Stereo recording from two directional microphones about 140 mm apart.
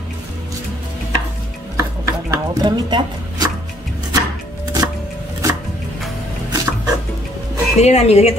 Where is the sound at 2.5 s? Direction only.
30° right (ahead or behind).